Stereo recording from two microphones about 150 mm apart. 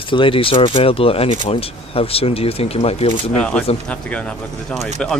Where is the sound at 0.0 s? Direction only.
35° left (ahead or behind).